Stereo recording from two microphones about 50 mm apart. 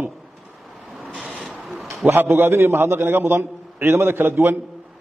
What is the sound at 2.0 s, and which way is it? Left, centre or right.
A man's voice, right.